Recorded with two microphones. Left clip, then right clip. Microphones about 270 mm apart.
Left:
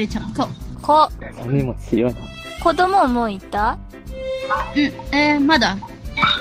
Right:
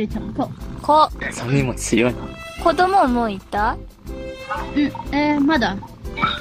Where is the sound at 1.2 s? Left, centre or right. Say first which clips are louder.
Right 2 dB; right.